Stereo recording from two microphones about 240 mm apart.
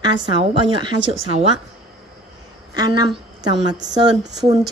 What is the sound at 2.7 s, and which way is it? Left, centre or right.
A woman's voice, centre.